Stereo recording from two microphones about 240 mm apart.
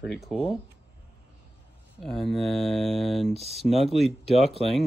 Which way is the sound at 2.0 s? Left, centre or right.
Centre.